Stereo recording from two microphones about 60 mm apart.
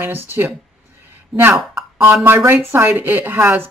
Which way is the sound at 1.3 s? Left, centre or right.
Centre.